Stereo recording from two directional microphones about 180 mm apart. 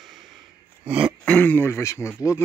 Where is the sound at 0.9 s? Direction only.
5° right (ahead or behind).